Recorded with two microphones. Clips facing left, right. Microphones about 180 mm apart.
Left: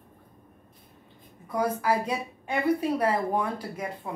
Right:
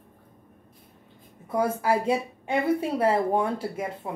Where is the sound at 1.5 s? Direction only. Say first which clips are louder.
Right 2 dB; 25° right (ahead or behind).